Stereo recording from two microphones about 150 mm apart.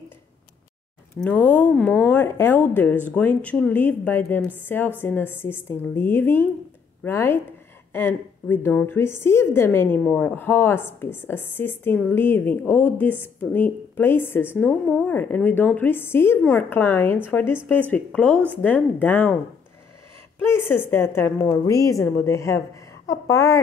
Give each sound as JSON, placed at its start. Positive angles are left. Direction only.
{"t": 1.2, "sound": "a woman's voice", "side_deg": 10}
{"t": 20.4, "sound": "a woman's voice", "side_deg": 15}